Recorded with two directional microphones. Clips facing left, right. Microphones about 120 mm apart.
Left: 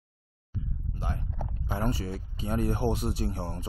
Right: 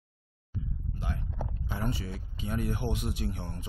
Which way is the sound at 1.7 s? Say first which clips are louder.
Left 5 dB; 40° left (ahead or behind).